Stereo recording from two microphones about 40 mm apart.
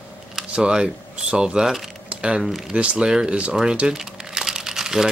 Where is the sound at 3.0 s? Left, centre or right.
Centre.